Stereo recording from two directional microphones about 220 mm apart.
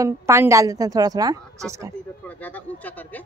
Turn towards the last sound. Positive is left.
turn(degrees=5)  # may be behind; listen again after turning